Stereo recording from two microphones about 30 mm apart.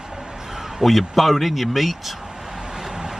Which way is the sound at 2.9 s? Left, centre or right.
Right.